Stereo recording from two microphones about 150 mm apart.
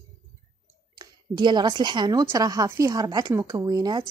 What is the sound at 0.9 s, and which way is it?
A woman's voice, 30° right (ahead or behind).